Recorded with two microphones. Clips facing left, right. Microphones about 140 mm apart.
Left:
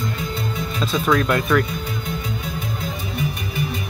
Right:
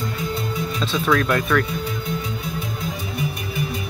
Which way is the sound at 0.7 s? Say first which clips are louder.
Left 1 dB; 10° left (ahead or behind).